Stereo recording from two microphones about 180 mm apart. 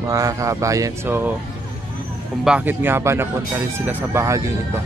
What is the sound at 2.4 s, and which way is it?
Speech, 5° right (ahead or behind).